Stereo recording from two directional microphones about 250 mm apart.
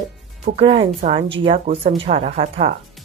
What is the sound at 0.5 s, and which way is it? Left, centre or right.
A woman's voice, right.